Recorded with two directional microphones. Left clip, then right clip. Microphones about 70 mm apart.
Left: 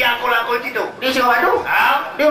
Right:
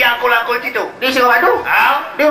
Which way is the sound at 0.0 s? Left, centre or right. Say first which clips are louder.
Right 4 dB; right.